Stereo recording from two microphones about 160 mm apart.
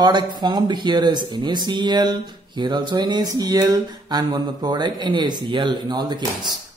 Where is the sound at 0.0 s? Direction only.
25° right (ahead or behind).